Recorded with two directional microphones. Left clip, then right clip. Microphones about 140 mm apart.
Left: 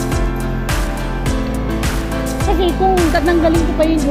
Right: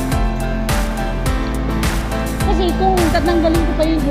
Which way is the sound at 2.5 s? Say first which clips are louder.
Left 2 dB; 20° left (ahead or behind).